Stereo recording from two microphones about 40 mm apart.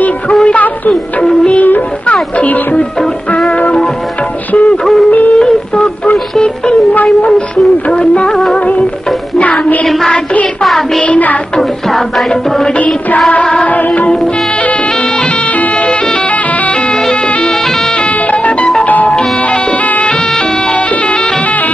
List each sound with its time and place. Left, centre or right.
0.5 s music: left
1.6 s music: left
3.0 s music: centre
5.3 s a sound: left
6.3 s music: left
7.9 s music: left
9.4 s music: left
9.8 s music: centre
11.1 s music: left
11.9 s music: centre
12.7 s music: left
18.3 s music: left
19.1 s music: left